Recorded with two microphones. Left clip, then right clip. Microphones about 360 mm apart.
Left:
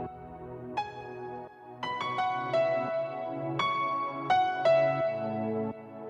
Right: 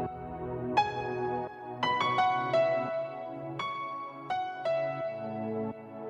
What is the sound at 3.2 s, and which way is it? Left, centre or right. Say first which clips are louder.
Music: left 5 dB; left.